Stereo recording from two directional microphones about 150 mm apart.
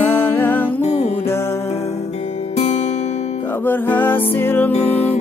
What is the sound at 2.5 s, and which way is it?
Music, 45° left (ahead or behind).